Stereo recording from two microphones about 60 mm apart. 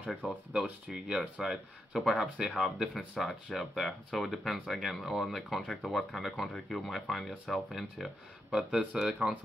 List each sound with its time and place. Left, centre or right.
0.1 s speech: left
0.5 s speech: centre
8.5 s speech: centre